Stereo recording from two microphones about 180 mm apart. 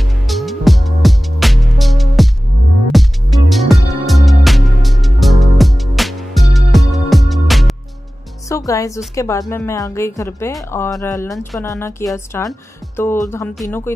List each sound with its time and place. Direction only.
0.0 s music: centre (ahead or behind)
8.5 s a woman's voice: 15° left (ahead or behind)